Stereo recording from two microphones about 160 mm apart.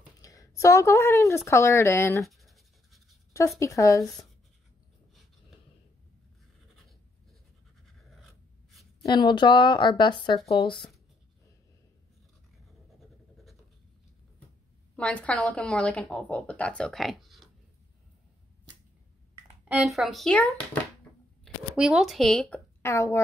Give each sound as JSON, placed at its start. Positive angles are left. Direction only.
{"t": 0.2, "sound": "speech", "side_deg": 20}
{"t": 2.2, "sound": "writing", "side_deg": 0}
{"t": 3.3, "sound": "speech", "side_deg": 20}
{"t": 4.0, "sound": "a woman's voice", "side_deg": 0}
{"t": 7.8, "sound": "a sound", "side_deg": 0}
{"t": 9.0, "sound": "speech", "side_deg": 30}
{"t": 15.0, "sound": "speech", "side_deg": 5}
{"t": 19.7, "sound": "a woman's voice", "side_deg": 0}
{"t": 21.7, "sound": "a woman's voice", "side_deg": -5}
{"t": 22.8, "sound": "a woman's voice", "side_deg": 15}